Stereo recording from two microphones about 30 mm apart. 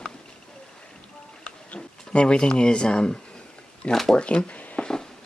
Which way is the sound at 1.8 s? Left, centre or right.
Left.